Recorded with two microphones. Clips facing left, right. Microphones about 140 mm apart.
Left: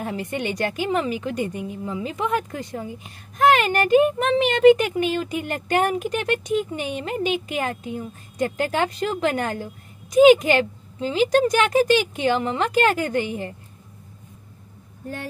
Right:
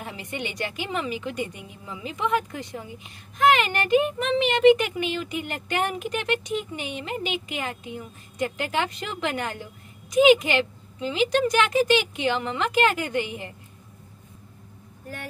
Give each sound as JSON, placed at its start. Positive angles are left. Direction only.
{"t": 0.0, "sound": "a woman's voice", "side_deg": 45}